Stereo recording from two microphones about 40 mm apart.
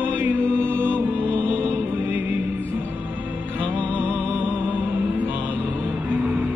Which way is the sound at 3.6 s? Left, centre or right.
Right.